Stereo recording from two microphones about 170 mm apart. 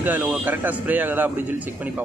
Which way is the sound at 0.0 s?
10° right (ahead or behind).